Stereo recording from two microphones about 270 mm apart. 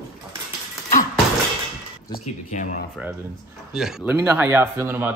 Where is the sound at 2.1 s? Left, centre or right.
Left.